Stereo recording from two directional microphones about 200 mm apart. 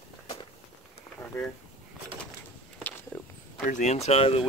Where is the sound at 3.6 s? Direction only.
35° left (ahead or behind).